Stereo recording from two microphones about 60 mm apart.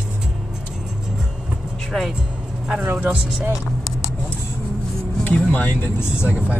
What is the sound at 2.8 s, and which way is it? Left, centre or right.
Speech, right.